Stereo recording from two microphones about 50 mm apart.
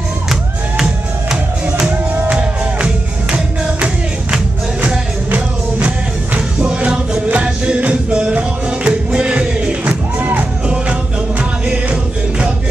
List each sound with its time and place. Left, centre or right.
2.2 s music: right
5.8 s music: right
11.6 s music: right